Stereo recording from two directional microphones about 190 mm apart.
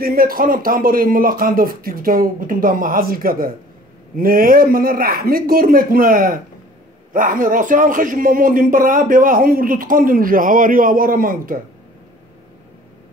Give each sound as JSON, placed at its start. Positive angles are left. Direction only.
{"t": 0.0, "sound": "a man's voice", "side_deg": -50}